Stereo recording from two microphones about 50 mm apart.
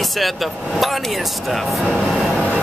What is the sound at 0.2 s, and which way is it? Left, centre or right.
Speech, centre.